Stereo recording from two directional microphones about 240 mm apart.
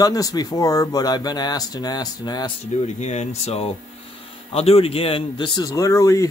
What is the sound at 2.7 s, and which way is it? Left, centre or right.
A man's voice, left.